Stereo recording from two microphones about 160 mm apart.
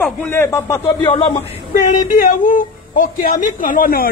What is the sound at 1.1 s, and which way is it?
Speech, 35° left (ahead or behind).